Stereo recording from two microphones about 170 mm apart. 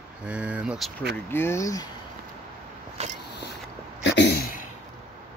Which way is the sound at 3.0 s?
40° right (ahead or behind).